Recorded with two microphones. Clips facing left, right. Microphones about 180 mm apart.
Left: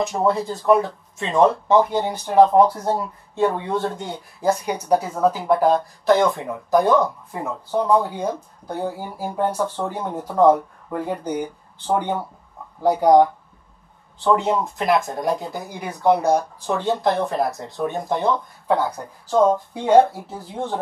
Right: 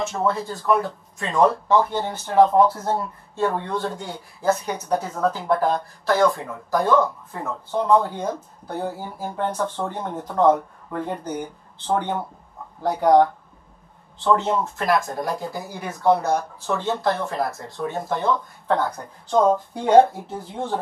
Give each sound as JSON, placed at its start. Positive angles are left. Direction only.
{"t": 0.1, "sound": "speech", "side_deg": 20}